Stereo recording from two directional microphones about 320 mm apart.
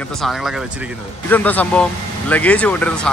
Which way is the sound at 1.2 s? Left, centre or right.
Centre.